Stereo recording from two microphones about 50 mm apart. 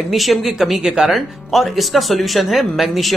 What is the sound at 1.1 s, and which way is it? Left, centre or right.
Speech, centre.